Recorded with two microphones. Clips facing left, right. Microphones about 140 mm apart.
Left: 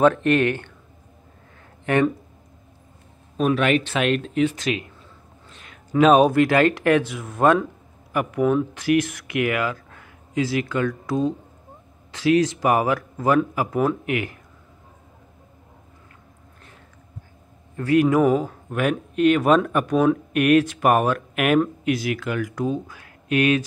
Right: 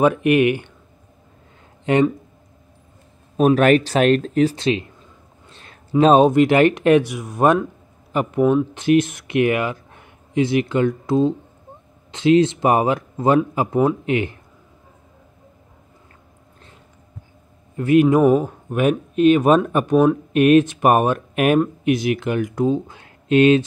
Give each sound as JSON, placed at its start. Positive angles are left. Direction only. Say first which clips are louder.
{"t": 0.0, "sound": "speech", "louder": "right 2 dB", "side_deg": -10}
{"t": 1.9, "sound": "speech", "louder": "right 3 dB", "side_deg": -20}
{"t": 3.3, "sound": "speech", "louder": "right 6 dB", "side_deg": -45}
{"t": 5.5, "sound": "a sound", "louder": "right 2 dB", "side_deg": -35}
{"t": 5.9, "sound": "speech", "louder": "right 2 dB", "side_deg": -30}
{"t": 17.7, "sound": "a man's voice", "louder": "right 3 dB", "side_deg": -20}